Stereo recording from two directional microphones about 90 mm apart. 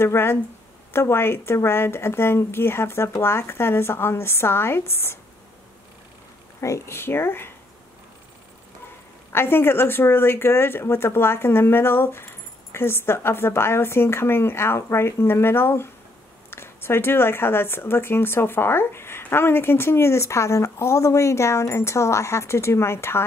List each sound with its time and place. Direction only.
0.0 s speech: 25° left (ahead or behind)
6.6 s speech: 30° left (ahead or behind)
9.3 s speech: 25° left (ahead or behind)